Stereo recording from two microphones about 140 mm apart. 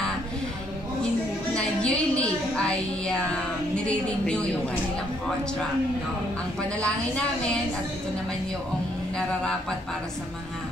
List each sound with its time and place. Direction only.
1.5 s music: 5° left (ahead or behind)
3.7 s a woman's voice: 5° left (ahead or behind)
6.8 s a woman's voice: 10° left (ahead or behind)
9.1 s speech: 5° left (ahead or behind)